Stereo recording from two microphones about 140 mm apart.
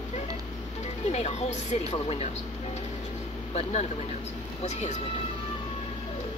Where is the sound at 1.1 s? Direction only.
50° left (ahead or behind).